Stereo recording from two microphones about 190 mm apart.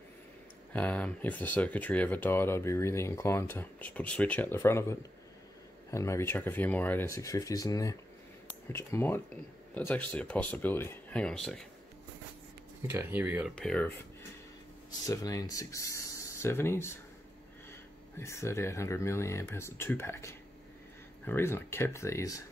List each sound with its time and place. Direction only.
0.7 s speech: 5° left (ahead or behind)
12.8 s speech: 10° right (ahead or behind)
13.6 s speech: 5° left (ahead or behind)
14.9 s speech: 20° left (ahead or behind)
18.1 s speech: 15° left (ahead or behind)